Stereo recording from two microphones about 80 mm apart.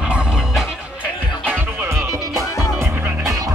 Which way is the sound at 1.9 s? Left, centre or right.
Right.